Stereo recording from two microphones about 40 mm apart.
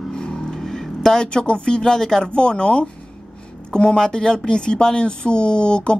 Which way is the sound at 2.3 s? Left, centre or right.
Left.